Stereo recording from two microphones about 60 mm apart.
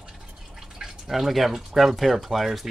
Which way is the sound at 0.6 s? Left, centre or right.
Centre.